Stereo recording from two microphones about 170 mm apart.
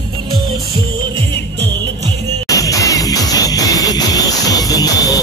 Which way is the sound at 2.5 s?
20° left (ahead or behind).